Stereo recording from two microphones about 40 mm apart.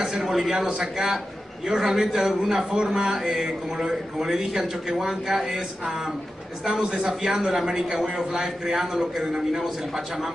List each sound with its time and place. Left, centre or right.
0.0 s a sound: centre
0.5 s speech: right
3.0 s speech: right
4.4 s speech: centre
6.7 s speech: right
7.1 s speech: centre
9.2 s speech: centre